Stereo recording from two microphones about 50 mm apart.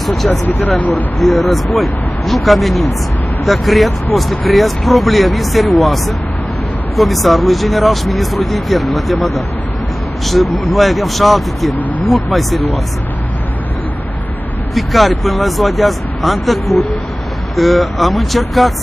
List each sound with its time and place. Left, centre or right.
0.0 s speech: centre
0.5 s speech: left
1.2 s speech: centre
14.7 s speech: centre
17.6 s speech: centre